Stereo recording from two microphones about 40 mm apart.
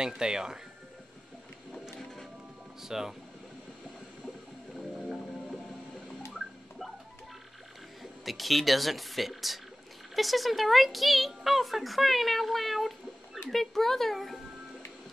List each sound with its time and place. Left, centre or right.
0.2 s speech: centre
2.8 s speech: centre
8.0 s speech: centre